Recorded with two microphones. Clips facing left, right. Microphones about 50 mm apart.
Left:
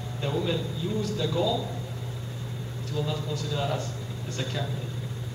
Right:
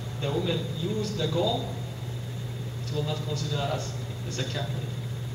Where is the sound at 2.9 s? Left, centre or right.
Centre.